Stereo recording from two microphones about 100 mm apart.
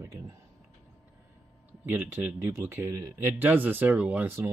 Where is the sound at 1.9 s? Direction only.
20° right (ahead or behind).